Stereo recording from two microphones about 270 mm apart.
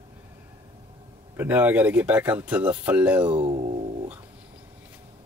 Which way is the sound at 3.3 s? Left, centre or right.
Right.